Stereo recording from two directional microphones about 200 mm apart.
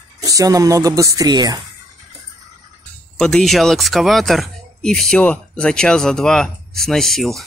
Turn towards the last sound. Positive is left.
turn(degrees=0)  # may be behind; listen again after turning